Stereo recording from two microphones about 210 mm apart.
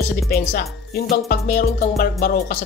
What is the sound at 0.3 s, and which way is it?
Speech, 45° left (ahead or behind).